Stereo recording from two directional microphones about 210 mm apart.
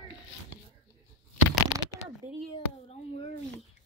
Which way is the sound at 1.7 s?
75° left (ahead or behind).